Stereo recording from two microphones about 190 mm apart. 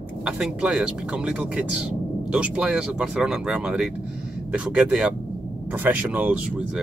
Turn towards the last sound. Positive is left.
turn(degrees=-10)  # may be behind; listen again after turning